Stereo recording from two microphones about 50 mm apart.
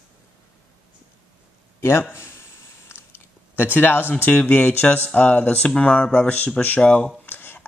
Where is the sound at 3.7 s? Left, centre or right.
Left.